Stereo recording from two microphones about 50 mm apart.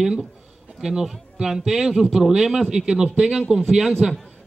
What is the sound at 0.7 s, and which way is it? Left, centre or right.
Speech, centre.